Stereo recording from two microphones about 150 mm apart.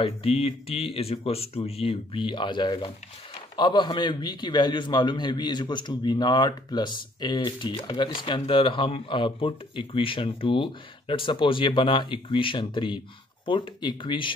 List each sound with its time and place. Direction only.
0.0 s a man's voice: 40° left (ahead or behind)